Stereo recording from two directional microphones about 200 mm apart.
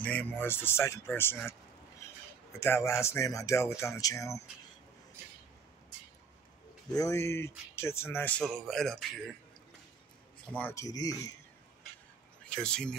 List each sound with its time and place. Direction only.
0.0 s speech: 10° left (ahead or behind)
2.6 s speech: 15° left (ahead or behind)
6.9 s speech: 15° left (ahead or behind)
10.5 s speech: 10° left (ahead or behind)
12.5 s speech: 5° left (ahead or behind)